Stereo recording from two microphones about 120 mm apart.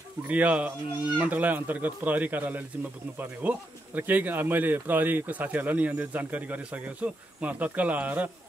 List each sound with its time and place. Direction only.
0.3 s speech: 10° right (ahead or behind)